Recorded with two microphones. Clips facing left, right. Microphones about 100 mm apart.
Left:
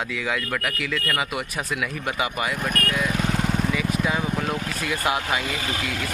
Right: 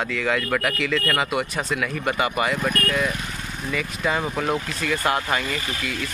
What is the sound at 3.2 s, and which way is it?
Lawn mower, 90° left.